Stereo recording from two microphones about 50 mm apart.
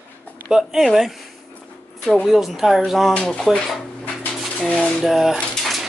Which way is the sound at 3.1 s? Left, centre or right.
Left.